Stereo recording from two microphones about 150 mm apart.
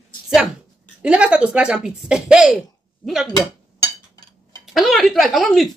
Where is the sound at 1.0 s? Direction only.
5° right (ahead or behind).